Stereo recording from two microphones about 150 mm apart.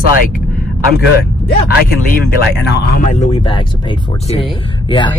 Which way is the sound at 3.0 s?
50° left (ahead or behind).